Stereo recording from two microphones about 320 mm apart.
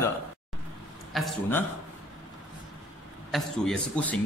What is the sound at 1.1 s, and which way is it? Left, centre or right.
Speech, centre.